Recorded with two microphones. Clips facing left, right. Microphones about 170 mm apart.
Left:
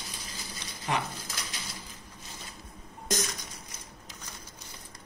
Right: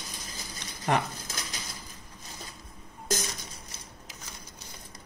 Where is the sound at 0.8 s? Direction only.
45° right (ahead or behind).